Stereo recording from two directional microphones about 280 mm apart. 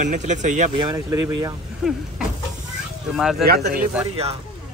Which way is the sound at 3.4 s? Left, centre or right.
Right.